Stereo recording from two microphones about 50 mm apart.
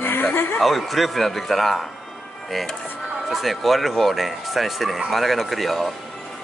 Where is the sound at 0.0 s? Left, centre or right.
Left.